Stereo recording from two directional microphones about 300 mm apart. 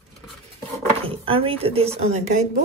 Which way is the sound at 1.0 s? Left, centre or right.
Centre.